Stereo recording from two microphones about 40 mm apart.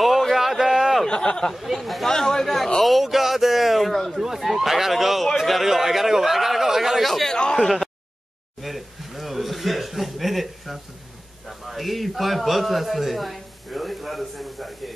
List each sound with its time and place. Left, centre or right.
0.0 s a sound: centre
1.0 s speech: centre
1.5 s speech: centre
2.0 s speech: centre
7.3 s speech: left
8.6 s a sound: centre
11.4 s a man's voice: centre